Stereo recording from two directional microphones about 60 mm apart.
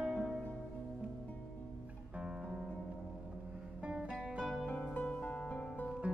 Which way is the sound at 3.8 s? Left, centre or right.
Centre.